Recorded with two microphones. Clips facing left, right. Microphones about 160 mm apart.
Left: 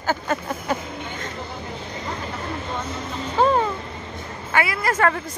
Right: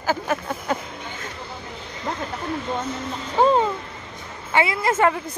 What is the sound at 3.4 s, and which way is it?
A woman's voice, 15° right (ahead or behind).